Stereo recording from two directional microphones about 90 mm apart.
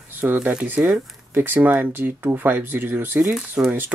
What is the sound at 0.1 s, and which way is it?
Speech, 20° right (ahead or behind).